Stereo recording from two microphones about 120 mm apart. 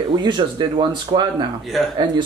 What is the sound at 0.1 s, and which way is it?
Speech, 40° right (ahead or behind).